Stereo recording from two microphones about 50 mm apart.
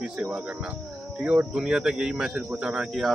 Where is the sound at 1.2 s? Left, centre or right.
Right.